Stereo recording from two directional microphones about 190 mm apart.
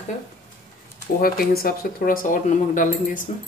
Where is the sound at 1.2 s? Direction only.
50° left (ahead or behind).